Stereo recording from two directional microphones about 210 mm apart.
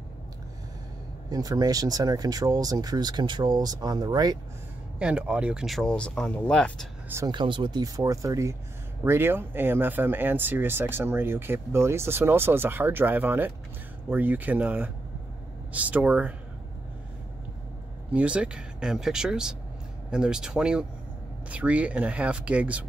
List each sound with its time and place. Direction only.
1.3 s speech: 15° right (ahead or behind)
4.9 s speech: 5° right (ahead or behind)
7.1 s speech: 15° right (ahead or behind)
18.1 s speech: 5° right (ahead or behind)